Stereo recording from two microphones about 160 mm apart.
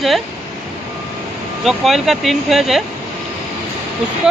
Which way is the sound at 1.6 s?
Centre (ahead or behind).